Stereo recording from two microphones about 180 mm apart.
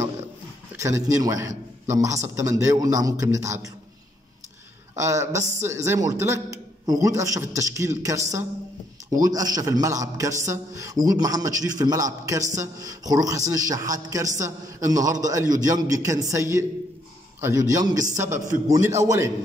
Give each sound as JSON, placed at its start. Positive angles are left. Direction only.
{"t": 0.7, "sound": "a man's voice", "side_deg": -15}
{"t": 4.9, "sound": "a man's voice", "side_deg": -15}